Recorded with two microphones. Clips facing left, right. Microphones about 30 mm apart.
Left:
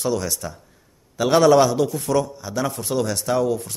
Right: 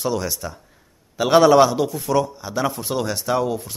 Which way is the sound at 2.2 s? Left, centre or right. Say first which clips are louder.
Right 2 dB; centre.